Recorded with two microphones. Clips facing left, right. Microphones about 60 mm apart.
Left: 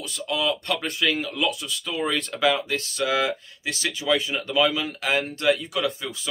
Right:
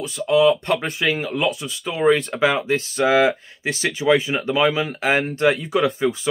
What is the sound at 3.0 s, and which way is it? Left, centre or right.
Speech, right.